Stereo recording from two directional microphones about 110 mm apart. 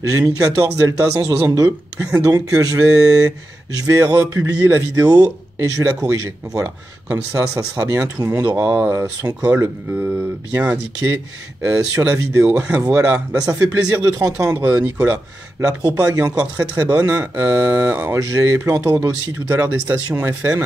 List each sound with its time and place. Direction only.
0.1 s speech: 30° right (ahead or behind)
2.0 s speech: 15° right (ahead or behind)
2.2 s speech: 30° right (ahead or behind)
5.0 s speech: 40° right (ahead or behind)
5.9 s speech: 15° right (ahead or behind)
6.1 s speech: 30° right (ahead or behind); by 13.0 s 10° right (ahead or behind)
13.4 s speech: 30° right (ahead or behind); by 14.8 s 15° right (ahead or behind)
15.6 s speech: 30° right (ahead or behind)
16.3 s speech: 15° right (ahead or behind)